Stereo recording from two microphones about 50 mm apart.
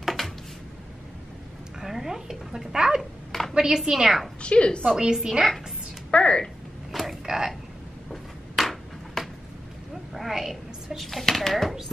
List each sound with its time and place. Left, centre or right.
0.0 s a sound: centre
1.8 s a woman's voice: centre
3.3 s a sound: centre
3.5 s a woman's voice: centre
4.4 s a woman's voice: left
4.9 s a woman's voice: centre
6.1 s a woman's voice: left
6.4 s a sound: centre
10.1 s speech: centre